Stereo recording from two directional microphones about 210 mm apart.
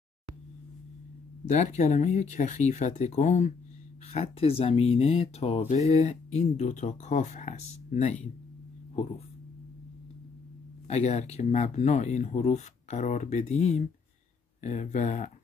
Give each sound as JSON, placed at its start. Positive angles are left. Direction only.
{"t": 1.5, "sound": "speech", "side_deg": 35}
{"t": 10.9, "sound": "speech", "side_deg": 30}